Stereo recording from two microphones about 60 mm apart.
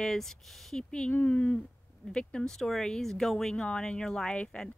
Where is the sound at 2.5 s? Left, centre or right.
Centre.